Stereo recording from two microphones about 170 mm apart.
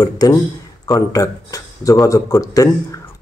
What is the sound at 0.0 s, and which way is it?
Speech, 20° left (ahead or behind).